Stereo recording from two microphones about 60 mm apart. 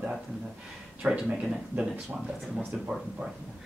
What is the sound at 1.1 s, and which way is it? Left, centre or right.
Speech, right.